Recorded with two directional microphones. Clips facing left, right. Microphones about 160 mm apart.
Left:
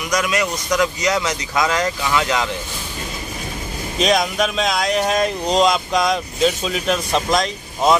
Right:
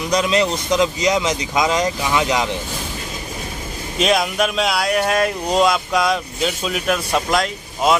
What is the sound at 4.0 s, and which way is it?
Speech, 5° right (ahead or behind).